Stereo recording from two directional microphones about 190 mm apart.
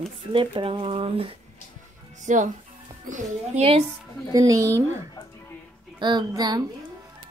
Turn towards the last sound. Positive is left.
turn(degrees=-20)  # may be behind; listen again after turning